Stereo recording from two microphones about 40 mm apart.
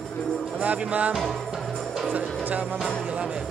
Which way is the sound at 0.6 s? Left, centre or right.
Right.